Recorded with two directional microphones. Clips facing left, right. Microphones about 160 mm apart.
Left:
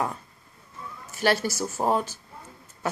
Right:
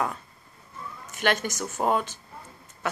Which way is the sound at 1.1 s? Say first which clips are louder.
Left 2 dB; 35° left (ahead or behind).